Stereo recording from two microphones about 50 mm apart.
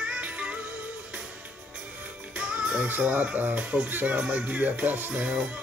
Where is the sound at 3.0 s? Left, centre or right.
Right.